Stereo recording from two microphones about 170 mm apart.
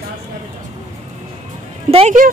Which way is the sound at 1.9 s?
35° right (ahead or behind).